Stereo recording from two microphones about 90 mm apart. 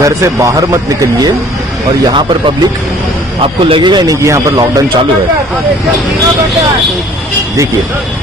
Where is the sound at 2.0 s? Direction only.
55° right (ahead or behind).